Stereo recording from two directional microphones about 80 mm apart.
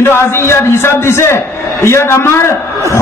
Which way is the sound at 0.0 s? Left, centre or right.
Left.